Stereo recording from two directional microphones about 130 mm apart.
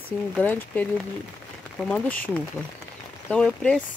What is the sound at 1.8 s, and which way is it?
Speech, 10° left (ahead or behind).